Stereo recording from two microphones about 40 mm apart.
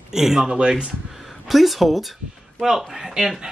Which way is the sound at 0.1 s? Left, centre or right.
Centre.